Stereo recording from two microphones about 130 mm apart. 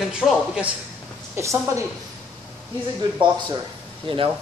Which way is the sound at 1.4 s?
20° right (ahead or behind).